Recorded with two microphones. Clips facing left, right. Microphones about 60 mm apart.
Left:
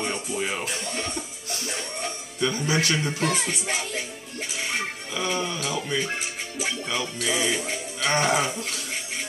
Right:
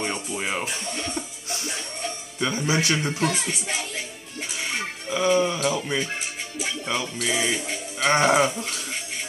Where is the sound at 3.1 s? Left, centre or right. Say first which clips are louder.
Even; left.